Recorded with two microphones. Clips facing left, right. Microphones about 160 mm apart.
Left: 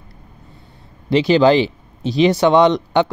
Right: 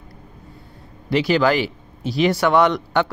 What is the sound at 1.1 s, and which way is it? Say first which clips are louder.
Speech: left 5 dB; 20° left (ahead or behind).